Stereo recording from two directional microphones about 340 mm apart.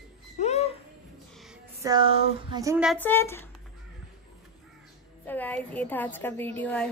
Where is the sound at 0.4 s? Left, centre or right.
Centre.